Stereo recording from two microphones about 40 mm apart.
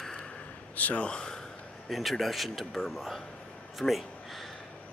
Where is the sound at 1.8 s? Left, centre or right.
Centre.